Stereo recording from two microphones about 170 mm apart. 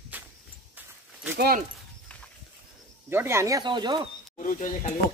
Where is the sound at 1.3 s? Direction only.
60° right (ahead or behind).